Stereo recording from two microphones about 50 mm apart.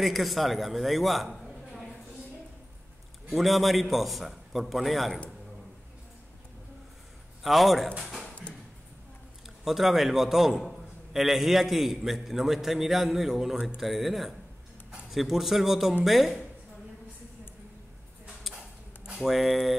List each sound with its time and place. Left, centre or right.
0.0 s a man's voice: centre
3.3 s a man's voice: centre
7.4 s a man's voice: centre
8.2 s a sound: left
9.7 s a man's voice: centre
19.1 s a man's voice: centre